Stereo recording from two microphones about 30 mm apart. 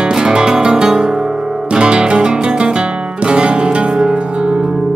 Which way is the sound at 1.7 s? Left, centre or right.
Right.